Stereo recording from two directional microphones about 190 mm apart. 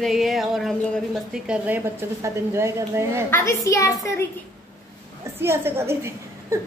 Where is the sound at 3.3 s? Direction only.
15° left (ahead or behind).